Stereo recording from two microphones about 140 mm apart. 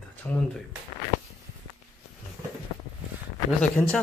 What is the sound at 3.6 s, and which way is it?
Speech, 10° left (ahead or behind).